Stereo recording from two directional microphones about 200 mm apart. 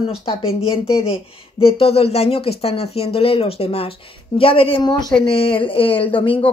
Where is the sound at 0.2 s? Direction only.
30° left (ahead or behind).